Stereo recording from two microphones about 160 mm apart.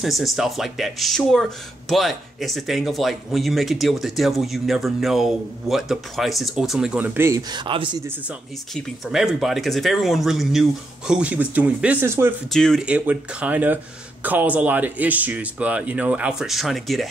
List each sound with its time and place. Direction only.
0.0 s speech: centre (ahead or behind)
7.5 s speech: 30° right (ahead or behind)
9.0 s speech: centre (ahead or behind)
12.4 s speech: centre (ahead or behind)
12.8 s speech: 10° right (ahead or behind)